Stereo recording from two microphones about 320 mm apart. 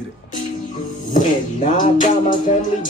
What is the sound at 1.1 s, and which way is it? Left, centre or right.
Music, left.